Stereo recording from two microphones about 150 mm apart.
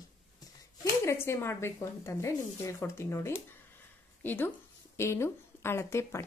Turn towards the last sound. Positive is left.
turn(degrees=15)  # may be behind; listen again after turning